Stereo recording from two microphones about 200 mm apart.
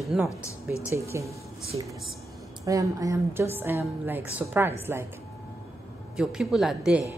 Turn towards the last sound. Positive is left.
turn(degrees=-5)  # may be behind; listen again after turning